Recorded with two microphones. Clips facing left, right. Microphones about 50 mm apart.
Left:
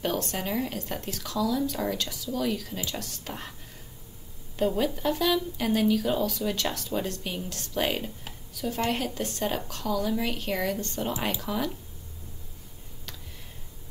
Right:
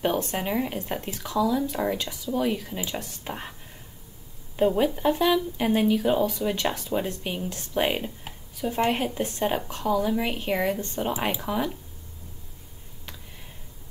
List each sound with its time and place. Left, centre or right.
0.0 s speech: centre
4.6 s speech: right